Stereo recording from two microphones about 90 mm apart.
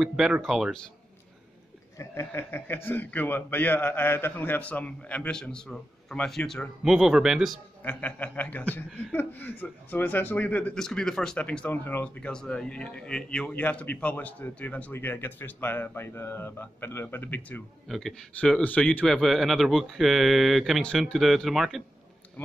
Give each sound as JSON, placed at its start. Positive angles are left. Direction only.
{"t": 0.0, "sound": "speech", "side_deg": -5}
{"t": 2.0, "sound": "a man's voice", "side_deg": 30}
{"t": 7.8, "sound": "a man's voice", "side_deg": 15}
{"t": 10.8, "sound": "a man's voice", "side_deg": 5}
{"t": 17.8, "sound": "speech", "side_deg": 0}
{"t": 18.4, "sound": "speech", "side_deg": 15}